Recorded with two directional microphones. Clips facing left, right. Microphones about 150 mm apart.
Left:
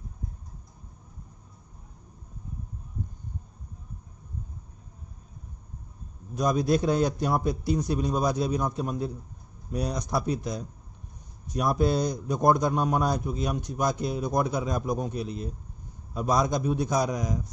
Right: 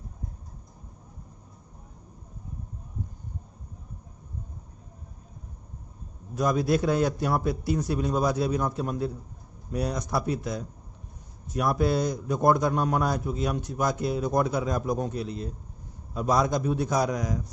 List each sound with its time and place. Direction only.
6.3 s a man's voice: 15° left (ahead or behind)